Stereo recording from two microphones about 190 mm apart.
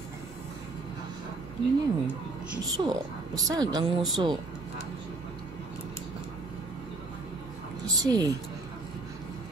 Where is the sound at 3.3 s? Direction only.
20° right (ahead or behind).